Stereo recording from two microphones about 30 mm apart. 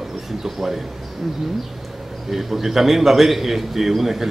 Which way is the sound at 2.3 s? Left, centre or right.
Centre.